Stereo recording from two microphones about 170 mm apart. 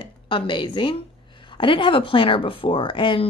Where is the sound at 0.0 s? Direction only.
30° left (ahead or behind).